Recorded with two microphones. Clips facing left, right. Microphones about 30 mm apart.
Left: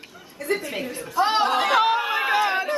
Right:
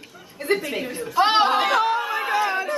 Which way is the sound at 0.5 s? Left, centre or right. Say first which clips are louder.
Right 3 dB; right.